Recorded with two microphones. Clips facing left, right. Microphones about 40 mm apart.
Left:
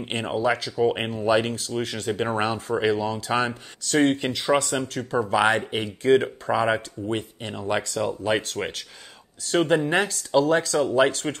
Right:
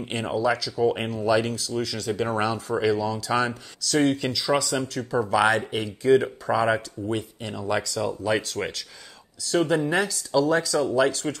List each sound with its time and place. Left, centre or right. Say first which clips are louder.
0.0 s speech: even; left
5.2 s speech: even; left